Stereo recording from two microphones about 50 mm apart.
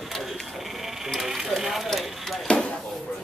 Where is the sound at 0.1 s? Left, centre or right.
Centre.